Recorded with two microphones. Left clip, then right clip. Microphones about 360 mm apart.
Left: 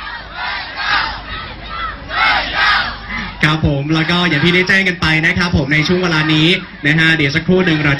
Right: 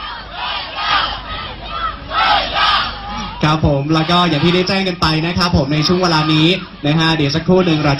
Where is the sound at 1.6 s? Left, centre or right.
Centre.